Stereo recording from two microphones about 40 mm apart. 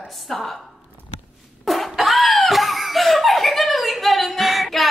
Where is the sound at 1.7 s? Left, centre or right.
Centre.